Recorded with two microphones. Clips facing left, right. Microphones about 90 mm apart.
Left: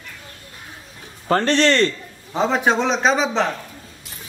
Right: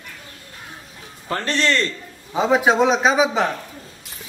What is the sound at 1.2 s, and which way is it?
Speech, 30° left (ahead or behind).